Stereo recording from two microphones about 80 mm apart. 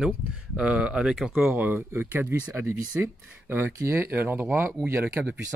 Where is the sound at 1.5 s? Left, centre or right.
Right.